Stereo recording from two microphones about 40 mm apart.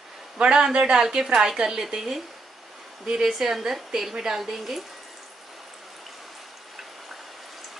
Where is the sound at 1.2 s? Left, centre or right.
Centre.